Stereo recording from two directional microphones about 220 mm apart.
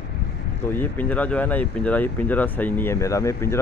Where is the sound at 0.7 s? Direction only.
10° left (ahead or behind).